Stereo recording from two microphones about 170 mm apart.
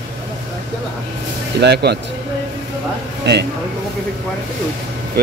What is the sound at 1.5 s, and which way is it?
Speech, 75° right (ahead or behind).